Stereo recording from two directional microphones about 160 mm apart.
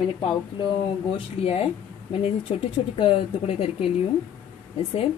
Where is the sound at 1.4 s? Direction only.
40° left (ahead or behind).